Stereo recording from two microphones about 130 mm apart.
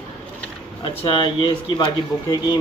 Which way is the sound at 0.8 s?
40° left (ahead or behind).